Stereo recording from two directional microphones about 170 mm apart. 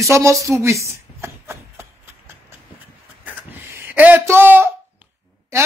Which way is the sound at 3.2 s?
15° right (ahead or behind).